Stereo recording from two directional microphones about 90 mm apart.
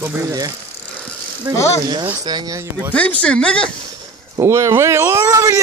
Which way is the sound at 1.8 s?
55° right (ahead or behind).